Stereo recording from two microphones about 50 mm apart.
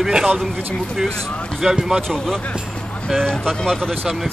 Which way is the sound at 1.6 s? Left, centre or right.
Centre.